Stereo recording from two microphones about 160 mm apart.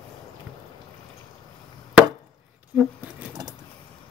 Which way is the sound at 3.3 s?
25° right (ahead or behind).